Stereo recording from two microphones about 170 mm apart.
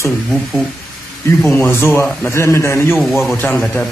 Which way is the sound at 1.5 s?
15° left (ahead or behind).